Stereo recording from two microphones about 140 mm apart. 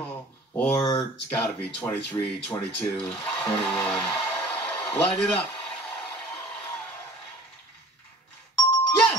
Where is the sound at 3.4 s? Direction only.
5° left (ahead or behind).